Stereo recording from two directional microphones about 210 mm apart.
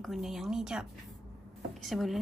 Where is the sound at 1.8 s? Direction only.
Centre (ahead or behind).